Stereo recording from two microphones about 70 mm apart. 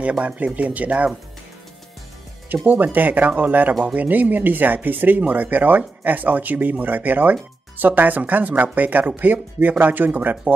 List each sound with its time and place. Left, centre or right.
0.6 s speech: right
2.5 s speech: right